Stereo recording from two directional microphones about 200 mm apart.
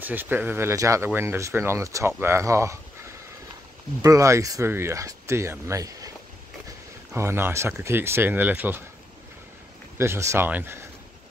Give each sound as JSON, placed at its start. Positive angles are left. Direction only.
{"t": 0.0, "sound": "speech", "side_deg": -10}
{"t": 4.0, "sound": "speech", "side_deg": -15}
{"t": 7.2, "sound": "speech", "side_deg": -10}
{"t": 9.9, "sound": "speech", "side_deg": -15}